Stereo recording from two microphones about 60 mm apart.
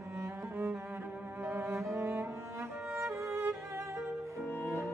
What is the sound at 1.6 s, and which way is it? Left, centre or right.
Cello, right.